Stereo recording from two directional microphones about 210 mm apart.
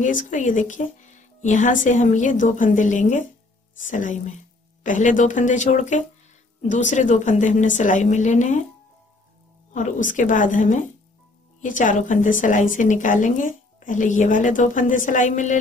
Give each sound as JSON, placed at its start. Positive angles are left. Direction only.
{"t": 0.0, "sound": "a woman's voice", "side_deg": 40}
{"t": 9.8, "sound": "a woman's voice", "side_deg": 35}